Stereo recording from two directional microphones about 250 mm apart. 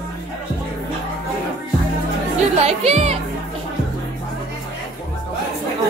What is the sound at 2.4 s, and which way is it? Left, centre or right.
Music, right.